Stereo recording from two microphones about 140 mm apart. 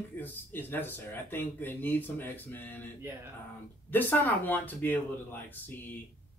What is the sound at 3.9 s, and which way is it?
Speech, 15° left (ahead or behind).